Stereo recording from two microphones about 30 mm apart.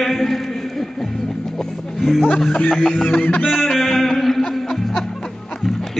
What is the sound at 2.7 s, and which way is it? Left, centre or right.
Snicker, centre.